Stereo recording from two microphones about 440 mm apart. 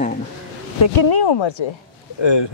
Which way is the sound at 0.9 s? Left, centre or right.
Left.